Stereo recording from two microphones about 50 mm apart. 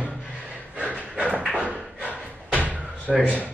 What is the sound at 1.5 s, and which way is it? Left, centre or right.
Door, right.